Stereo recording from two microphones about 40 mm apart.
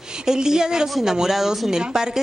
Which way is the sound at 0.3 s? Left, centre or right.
Centre.